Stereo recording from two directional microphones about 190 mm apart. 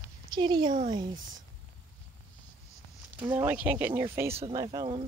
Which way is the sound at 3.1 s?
10° right (ahead or behind).